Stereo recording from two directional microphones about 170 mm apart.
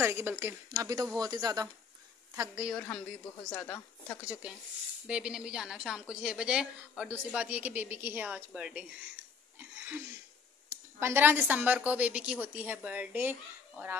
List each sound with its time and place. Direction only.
0.0 s a woman's voice: 15° right (ahead or behind)
2.7 s a woman's voice: 5° left (ahead or behind)
4.3 s a woman's voice: 10° right (ahead or behind)
9.6 s wheeze: 10° right (ahead or behind)
10.7 s a woman's voice: 15° right (ahead or behind)